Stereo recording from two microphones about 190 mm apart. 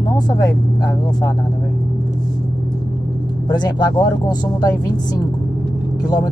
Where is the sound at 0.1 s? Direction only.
20° left (ahead or behind).